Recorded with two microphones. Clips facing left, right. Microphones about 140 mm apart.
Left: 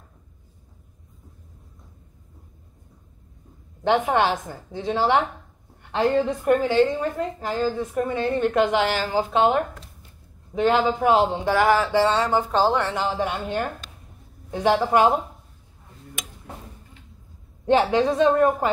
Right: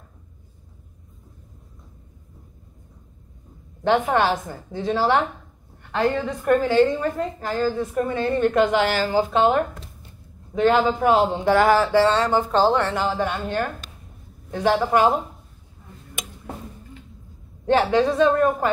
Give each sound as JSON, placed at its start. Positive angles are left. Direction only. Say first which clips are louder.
{"t": 3.8, "sound": "a woman's voice", "louder": "right 1 dB", "side_deg": 15}
{"t": 10.5, "sound": "a woman's voice", "louder": "right 2 dB", "side_deg": 10}
{"t": 17.6, "sound": "a woman's voice", "louder": "even", "side_deg": 20}